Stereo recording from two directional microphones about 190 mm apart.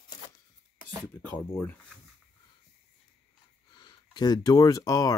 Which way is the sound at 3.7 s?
20° left (ahead or behind).